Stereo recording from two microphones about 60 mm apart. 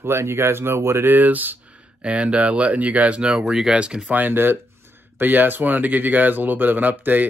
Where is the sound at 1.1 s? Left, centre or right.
Right.